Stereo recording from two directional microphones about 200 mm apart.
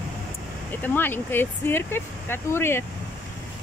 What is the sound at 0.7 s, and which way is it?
Speech, 10° left (ahead or behind).